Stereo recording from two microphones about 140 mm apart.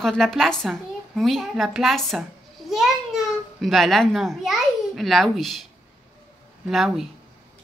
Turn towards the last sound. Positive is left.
turn(degrees=0)  # may be behind; listen again after turning